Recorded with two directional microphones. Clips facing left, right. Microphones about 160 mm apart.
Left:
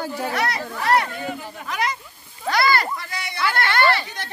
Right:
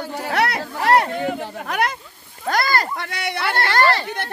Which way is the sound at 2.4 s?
45° right (ahead or behind).